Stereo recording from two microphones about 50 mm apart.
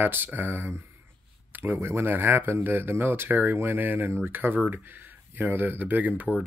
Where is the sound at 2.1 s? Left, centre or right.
Right.